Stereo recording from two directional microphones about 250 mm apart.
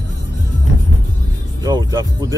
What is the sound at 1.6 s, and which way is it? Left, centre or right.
Music, centre.